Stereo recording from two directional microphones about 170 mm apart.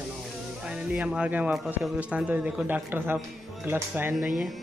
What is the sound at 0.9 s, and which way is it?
A man's voice, 5° right (ahead or behind).